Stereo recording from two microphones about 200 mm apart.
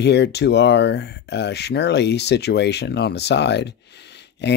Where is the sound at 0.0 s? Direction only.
60° left (ahead or behind).